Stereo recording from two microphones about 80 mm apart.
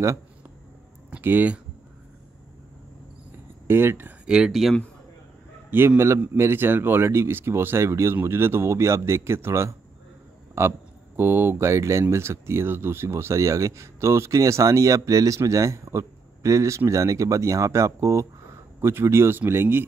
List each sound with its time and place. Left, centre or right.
1.1 s speech: right
3.3 s a sound: right
4.3 s speech: centre
5.7 s speech: right